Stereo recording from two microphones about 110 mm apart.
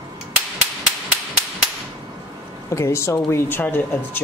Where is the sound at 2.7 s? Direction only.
25° left (ahead or behind).